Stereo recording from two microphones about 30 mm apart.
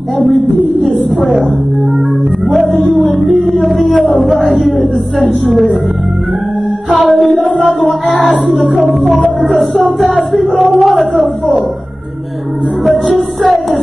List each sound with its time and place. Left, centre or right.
3.1 s music: centre
3.6 s a sound: centre
4.4 s speech: centre
7.0 s speech: centre
9.9 s speech: centre
12.8 s music: centre